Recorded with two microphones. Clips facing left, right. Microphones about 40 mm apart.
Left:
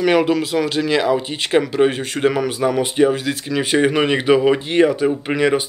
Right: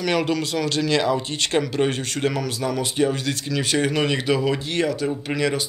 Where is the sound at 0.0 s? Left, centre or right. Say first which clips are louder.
Left 6 dB; centre.